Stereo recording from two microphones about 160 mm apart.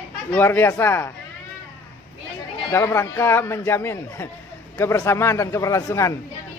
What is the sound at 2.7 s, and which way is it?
Speech, 20° left (ahead or behind).